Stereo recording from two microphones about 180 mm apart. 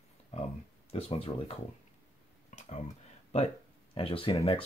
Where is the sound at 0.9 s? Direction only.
35° left (ahead or behind).